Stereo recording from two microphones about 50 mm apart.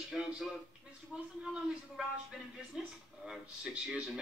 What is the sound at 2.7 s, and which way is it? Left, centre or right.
A man's voice, centre.